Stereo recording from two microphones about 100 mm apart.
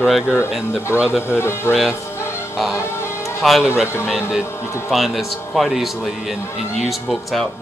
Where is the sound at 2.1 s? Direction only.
25° left (ahead or behind).